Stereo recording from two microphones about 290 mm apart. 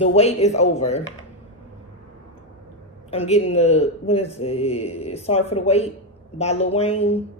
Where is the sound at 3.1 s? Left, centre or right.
Left.